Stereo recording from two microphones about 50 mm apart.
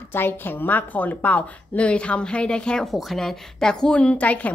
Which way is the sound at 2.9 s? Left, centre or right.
Centre.